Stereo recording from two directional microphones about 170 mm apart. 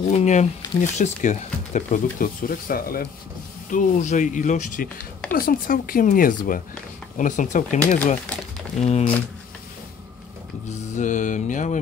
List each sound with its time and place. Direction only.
0.0 s speech: 45° left (ahead or behind); by 3.1 s 60° left (ahead or behind)
3.7 s speech: 45° left (ahead or behind)
10.7 s speech: 45° left (ahead or behind)